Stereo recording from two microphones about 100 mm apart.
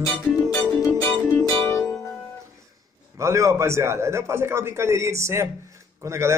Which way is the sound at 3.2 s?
30° right (ahead or behind).